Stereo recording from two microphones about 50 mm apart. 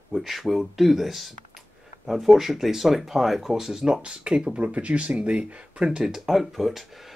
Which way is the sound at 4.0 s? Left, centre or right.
Right.